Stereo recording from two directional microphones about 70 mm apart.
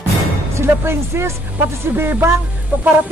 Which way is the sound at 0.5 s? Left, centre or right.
Right.